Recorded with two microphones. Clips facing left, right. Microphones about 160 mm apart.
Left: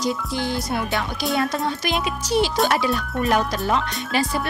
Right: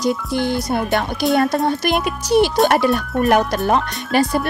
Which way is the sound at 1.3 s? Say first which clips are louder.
Right 5 dB; 45° right (ahead or behind).